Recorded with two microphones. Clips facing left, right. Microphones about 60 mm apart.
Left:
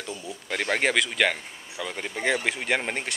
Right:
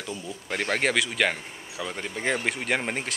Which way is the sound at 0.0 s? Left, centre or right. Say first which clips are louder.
Right 1 dB; centre.